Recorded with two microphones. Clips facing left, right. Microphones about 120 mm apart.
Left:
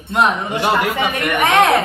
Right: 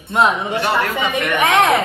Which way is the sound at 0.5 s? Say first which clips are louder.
Left 1 dB; 15° left (ahead or behind).